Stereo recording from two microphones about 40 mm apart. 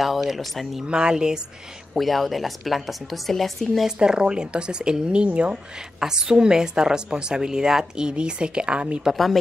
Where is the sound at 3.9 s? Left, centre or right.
Right.